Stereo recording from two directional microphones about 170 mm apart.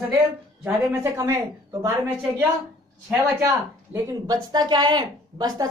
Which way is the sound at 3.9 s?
10° right (ahead or behind).